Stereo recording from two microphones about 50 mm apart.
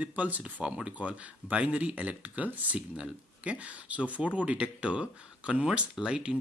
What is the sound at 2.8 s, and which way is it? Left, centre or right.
Speech, right.